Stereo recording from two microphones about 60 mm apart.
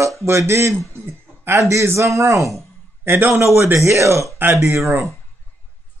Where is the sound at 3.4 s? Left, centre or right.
Right.